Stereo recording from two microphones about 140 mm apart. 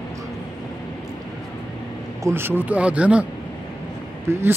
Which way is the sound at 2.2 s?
15° right (ahead or behind).